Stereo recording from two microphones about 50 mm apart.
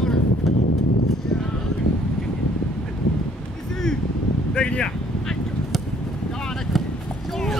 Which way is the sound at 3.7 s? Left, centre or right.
Centre.